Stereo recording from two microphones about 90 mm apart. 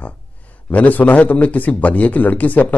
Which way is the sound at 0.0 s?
15° left (ahead or behind).